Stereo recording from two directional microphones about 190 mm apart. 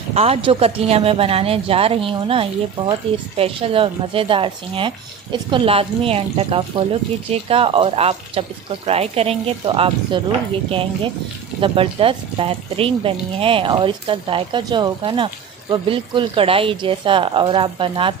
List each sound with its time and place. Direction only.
0.1 s speech: 30° right (ahead or behind)
11.6 s speech: 30° right (ahead or behind)